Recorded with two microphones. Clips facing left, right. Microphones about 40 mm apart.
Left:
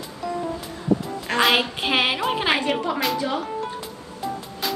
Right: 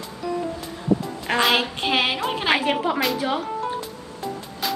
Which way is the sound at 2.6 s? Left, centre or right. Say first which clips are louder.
Right 1 dB; centre.